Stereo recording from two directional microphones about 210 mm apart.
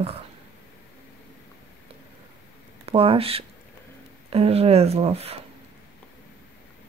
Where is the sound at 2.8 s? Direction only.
30° right (ahead or behind).